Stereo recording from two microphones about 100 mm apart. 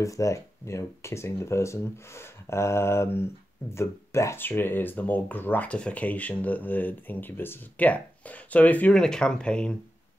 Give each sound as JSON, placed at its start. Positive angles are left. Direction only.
{"t": 0.0, "sound": "speech", "side_deg": 30}